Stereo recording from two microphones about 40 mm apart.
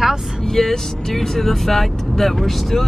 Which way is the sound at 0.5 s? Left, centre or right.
Centre.